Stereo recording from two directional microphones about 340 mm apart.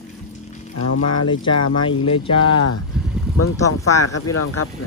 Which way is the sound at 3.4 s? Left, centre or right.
Left.